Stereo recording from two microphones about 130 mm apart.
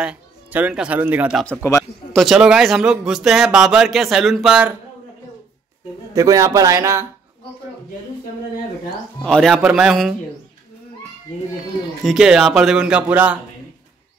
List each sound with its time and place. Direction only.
0.0 s speech: 10° right (ahead or behind)
1.6 s speech: 20° left (ahead or behind)
2.1 s a man's voice: centre (ahead or behind)
6.1 s speech: 25° right (ahead or behind)
9.2 s a man's voice: 5° left (ahead or behind)
12.0 s a man's voice: 5° right (ahead or behind)